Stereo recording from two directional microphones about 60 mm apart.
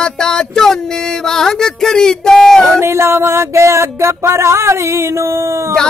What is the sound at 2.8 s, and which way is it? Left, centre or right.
Music, right.